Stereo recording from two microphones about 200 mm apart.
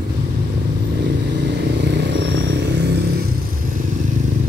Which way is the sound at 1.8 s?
60° right (ahead or behind).